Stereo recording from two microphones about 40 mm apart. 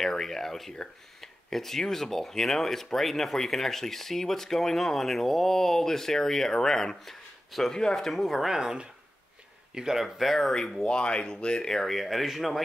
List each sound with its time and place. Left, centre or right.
0.0 s speech: centre
8.5 s speech: centre
10.0 s speech: centre
10.5 s speech: centre
11.7 s speech: centre